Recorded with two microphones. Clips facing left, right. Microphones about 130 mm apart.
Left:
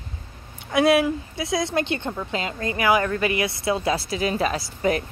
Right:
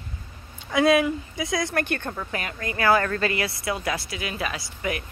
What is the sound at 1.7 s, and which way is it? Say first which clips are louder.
Speech: left 2 dB; 20° left (ahead or behind).